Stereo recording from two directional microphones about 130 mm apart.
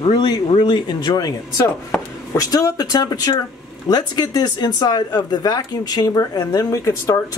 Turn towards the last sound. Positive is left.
turn(degrees=25)  # may be behind; listen again after turning